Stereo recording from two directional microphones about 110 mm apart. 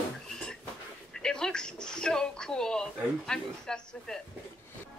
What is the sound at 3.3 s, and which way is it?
Speech, 5° left (ahead or behind).